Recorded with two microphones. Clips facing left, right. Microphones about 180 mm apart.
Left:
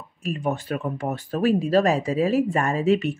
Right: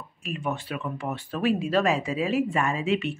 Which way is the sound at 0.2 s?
40° left (ahead or behind).